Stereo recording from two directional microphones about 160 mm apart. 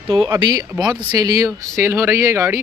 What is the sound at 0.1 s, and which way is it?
Speech, 30° right (ahead or behind).